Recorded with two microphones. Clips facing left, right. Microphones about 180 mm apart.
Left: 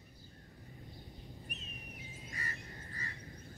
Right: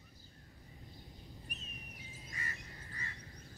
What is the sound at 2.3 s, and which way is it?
Bird, 40° left (ahead or behind).